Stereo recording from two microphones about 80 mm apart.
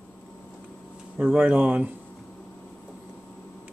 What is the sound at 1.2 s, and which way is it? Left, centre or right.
Speech, centre.